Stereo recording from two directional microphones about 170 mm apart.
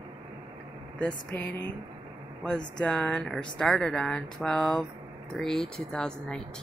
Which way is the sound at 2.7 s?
5° left (ahead or behind).